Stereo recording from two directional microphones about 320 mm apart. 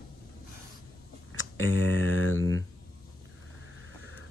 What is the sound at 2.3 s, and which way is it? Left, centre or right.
Speech, right.